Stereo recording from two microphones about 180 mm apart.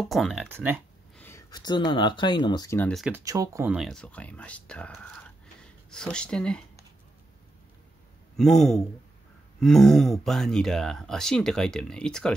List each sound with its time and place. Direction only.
0.0 s speech: centre (ahead or behind)
0.5 s speech: 10° right (ahead or behind)
1.1 s a sound: 10° left (ahead or behind)
1.5 s speech: 25° left (ahead or behind)
2.8 s speech: centre (ahead or behind)
3.1 s speech: 15° right (ahead or behind)
3.7 s speech: centre (ahead or behind)
8.4 s speech: 5° left (ahead or behind)